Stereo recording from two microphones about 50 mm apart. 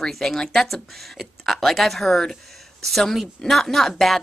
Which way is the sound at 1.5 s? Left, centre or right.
Centre.